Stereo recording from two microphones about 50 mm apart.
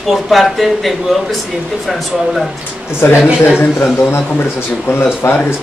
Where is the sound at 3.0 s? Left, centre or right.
Left.